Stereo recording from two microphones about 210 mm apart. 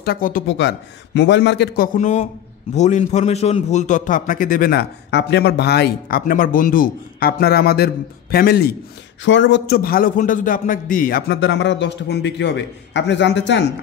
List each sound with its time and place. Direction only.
0.0 s a man's voice: 45° left (ahead or behind)
0.6 s a man's voice: 55° left (ahead or behind)
2.0 s a man's voice: 35° left (ahead or behind)
9.2 s a man's voice: 60° left (ahead or behind)
9.8 s a man's voice: 45° left (ahead or behind)